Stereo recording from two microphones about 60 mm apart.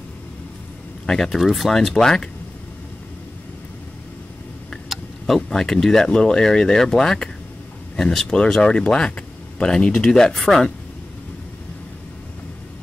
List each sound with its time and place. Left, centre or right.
1.0 s speech: centre
5.2 s speech: centre